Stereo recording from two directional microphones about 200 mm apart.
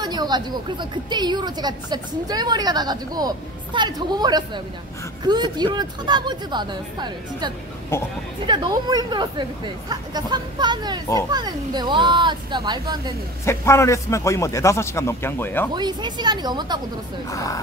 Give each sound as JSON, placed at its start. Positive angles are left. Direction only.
{"t": 0.0, "sound": "a woman's voice", "side_deg": -20}
{"t": 7.9, "sound": "a man's voice", "side_deg": 10}
{"t": 8.5, "sound": "a woman's voice", "side_deg": -20}
{"t": 13.5, "sound": "a man's voice", "side_deg": 15}
{"t": 15.7, "sound": "a woman's voice", "side_deg": -20}
{"t": 17.3, "sound": "a man's voice", "side_deg": 15}